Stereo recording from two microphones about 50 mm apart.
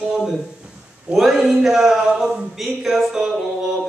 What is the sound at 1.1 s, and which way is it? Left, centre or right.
Speech, centre.